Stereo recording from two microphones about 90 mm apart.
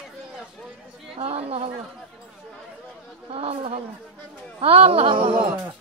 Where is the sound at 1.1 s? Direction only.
90° right.